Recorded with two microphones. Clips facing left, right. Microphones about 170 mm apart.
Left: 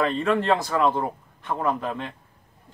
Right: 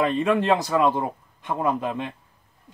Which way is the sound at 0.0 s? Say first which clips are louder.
Right 1 dB; 15° right (ahead or behind).